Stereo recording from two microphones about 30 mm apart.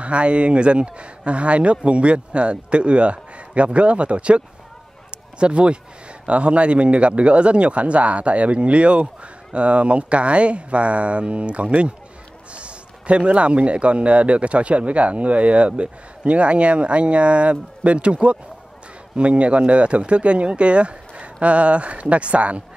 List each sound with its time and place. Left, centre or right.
0.0 s speech: right
5.4 s a man's voice: right